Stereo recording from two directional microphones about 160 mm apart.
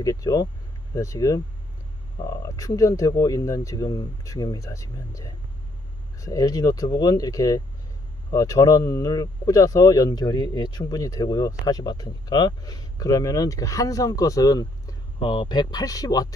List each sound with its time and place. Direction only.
0.0 s speech: 20° left (ahead or behind)